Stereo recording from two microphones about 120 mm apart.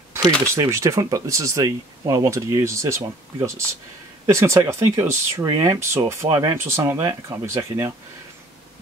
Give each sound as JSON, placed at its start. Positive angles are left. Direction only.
{"t": 0.6, "sound": "speech", "side_deg": -25}